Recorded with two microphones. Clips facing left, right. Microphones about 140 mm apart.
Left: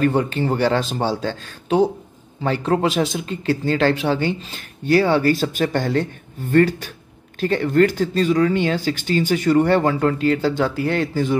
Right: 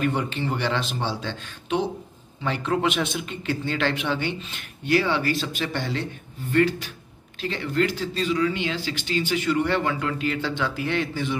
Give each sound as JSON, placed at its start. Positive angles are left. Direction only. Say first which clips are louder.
{"t": 0.0, "sound": "speech", "louder": "left 6 dB", "side_deg": 40}